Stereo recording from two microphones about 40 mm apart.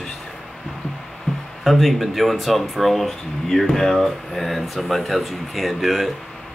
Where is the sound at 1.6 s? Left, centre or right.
Centre.